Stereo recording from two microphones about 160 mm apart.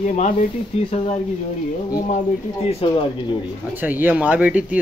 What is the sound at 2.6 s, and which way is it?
Speech, 35° left (ahead or behind).